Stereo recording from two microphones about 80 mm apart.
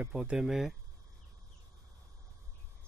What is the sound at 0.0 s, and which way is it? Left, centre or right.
Speech, centre.